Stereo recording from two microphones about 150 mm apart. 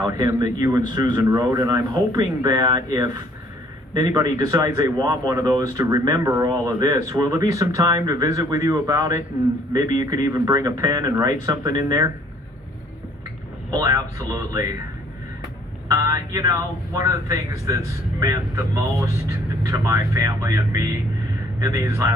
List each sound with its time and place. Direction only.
0.0 s speech: 20° right (ahead or behind)
13.7 s speech: 25° right (ahead or behind)
15.9 s speech: 20° right (ahead or behind)